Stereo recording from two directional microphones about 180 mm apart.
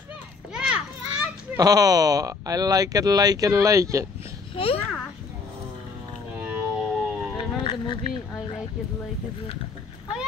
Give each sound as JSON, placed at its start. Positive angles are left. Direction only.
{"t": 0.5, "sound": "children playing", "side_deg": -5}
{"t": 1.6, "sound": "speech", "side_deg": -20}
{"t": 4.6, "sound": "a child's voice", "side_deg": 30}
{"t": 6.4, "sound": "whale vocalization", "side_deg": -5}
{"t": 7.3, "sound": "a sound", "side_deg": 30}